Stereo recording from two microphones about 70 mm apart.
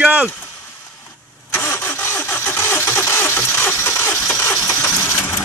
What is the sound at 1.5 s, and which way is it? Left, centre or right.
Engine starting, left.